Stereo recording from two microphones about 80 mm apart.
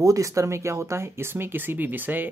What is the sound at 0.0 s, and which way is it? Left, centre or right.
Speech, right.